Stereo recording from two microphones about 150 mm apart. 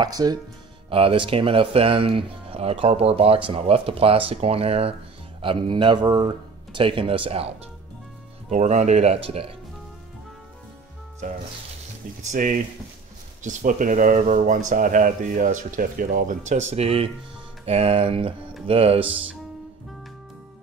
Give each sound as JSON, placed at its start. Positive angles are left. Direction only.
{"t": 0.0, "sound": "speech", "side_deg": -25}
{"t": 0.8, "sound": "speech", "side_deg": -35}
{"t": 8.5, "sound": "speech", "side_deg": -50}
{"t": 12.3, "sound": "speech", "side_deg": -60}